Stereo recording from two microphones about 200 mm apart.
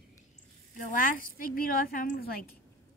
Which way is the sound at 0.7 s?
40° left (ahead or behind).